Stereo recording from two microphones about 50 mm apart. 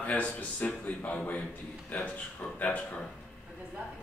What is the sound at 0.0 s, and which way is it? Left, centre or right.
Speech, left.